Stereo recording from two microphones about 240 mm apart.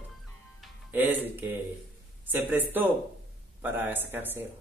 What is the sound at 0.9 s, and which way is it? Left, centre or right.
A man's voice, centre.